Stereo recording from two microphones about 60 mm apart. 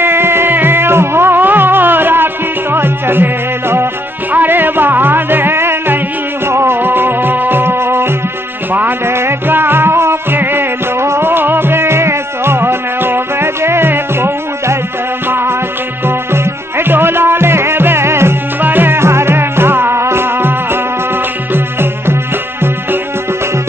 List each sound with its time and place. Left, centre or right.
0.0 s music: right
16.7 s music: right
18.6 s music: right